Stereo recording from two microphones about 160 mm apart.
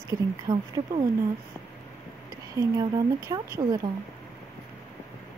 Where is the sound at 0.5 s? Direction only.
25° right (ahead or behind).